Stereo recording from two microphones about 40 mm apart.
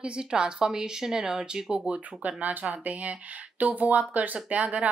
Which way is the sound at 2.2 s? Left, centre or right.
Right.